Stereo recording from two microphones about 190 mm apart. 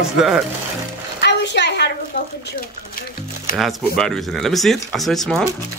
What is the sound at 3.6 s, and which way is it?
Speech, centre (ahead or behind).